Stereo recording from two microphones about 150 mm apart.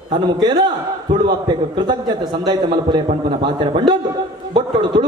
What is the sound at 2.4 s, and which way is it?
A man's voice, 30° right (ahead or behind).